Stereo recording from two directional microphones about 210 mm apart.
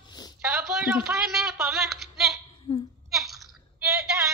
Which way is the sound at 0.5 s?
5° right (ahead or behind).